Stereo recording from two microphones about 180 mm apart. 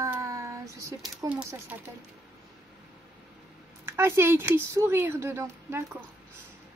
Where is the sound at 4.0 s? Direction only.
15° right (ahead or behind).